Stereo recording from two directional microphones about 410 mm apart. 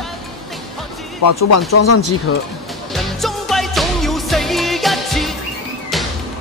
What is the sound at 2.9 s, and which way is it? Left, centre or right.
Music, centre.